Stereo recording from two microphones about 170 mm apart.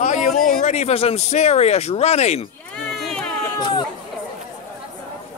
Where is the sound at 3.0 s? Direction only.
5° left (ahead or behind).